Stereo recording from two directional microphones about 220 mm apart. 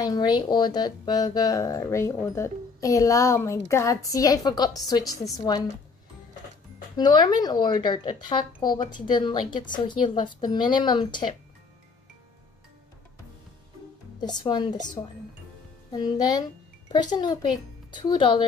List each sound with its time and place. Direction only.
0.0 s speech: 20° left (ahead or behind)
7.0 s speech: 20° left (ahead or behind)
8.6 s speech: 35° left (ahead or behind)
9.1 s speech: 20° left (ahead or behind)
14.2 s speech: 20° left (ahead or behind)
15.9 s speech: 20° left (ahead or behind)